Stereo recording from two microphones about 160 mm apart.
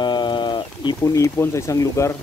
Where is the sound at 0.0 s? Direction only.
30° left (ahead or behind).